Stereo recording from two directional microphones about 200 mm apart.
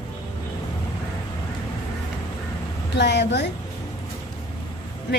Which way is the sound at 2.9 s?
60° left (ahead or behind).